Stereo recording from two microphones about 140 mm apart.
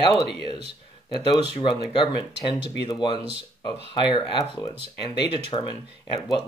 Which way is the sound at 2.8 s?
35° left (ahead or behind).